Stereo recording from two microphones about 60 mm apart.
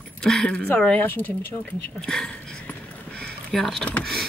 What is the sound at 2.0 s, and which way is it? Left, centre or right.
Speech, centre.